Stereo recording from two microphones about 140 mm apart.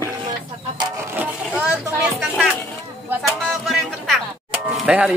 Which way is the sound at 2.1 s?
Centre (ahead or behind).